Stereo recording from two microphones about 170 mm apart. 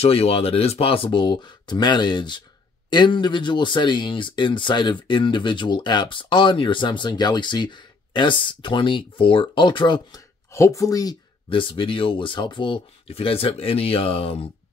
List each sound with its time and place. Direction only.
0.0 s speech: 35° left (ahead or behind)